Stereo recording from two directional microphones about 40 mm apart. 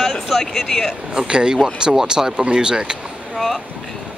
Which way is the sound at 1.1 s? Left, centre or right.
Right.